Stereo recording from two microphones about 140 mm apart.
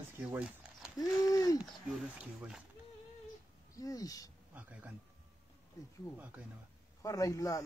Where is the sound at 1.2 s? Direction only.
25° left (ahead or behind).